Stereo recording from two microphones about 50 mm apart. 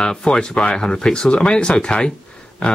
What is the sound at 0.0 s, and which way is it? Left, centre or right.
Speech, centre.